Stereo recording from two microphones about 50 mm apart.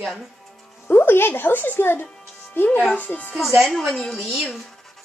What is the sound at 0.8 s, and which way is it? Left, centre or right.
Speech, left.